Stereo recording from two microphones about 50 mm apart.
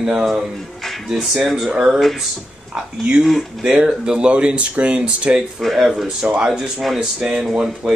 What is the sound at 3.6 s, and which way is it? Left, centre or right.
Speech, centre.